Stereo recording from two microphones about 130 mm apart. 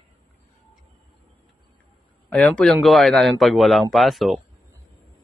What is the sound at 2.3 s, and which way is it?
A man's voice, 5° left (ahead or behind).